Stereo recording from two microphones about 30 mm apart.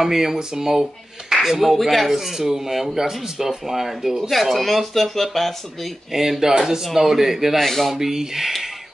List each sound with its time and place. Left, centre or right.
0.0 s a man's voice: centre
1.8 s speech: centre
2.1 s speech: centre
4.3 s speech: centre
6.1 s speech: centre
7.5 s speech: centre
7.9 s speech: centre